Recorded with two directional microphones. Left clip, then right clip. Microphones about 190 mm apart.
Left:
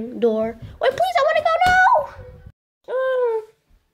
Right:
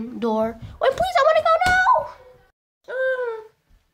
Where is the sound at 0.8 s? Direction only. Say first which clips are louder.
Even; centre (ahead or behind); by 2.1 s 15° left (ahead or behind).